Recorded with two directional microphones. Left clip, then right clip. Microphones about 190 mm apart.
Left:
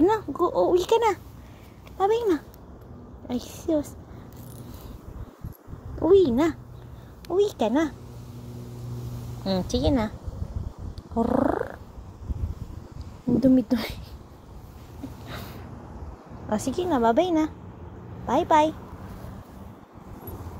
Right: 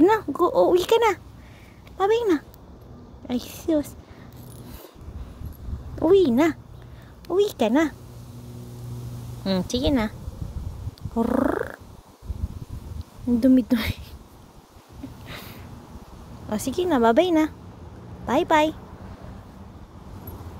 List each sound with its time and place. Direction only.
0.4 s a woman's voice: 35° right (ahead or behind)
5.9 s a woman's voice: 35° right (ahead or behind)
9.4 s a woman's voice: 35° right (ahead or behind)
11.1 s purr: 30° right (ahead or behind)
13.4 s speech: 30° right (ahead or behind)
15.2 s a sound: 15° right (ahead or behind)
16.4 s speech: 20° right (ahead or behind)
16.9 s speech: 40° right (ahead or behind)